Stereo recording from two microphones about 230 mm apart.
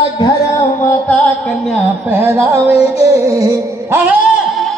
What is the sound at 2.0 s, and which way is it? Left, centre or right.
Music, centre.